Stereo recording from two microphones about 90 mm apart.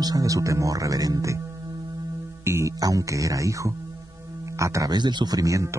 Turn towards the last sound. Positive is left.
turn(degrees=-40)  # may be behind; listen again after turning